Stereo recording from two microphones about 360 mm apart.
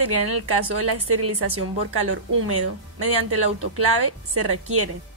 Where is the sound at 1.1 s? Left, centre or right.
Right.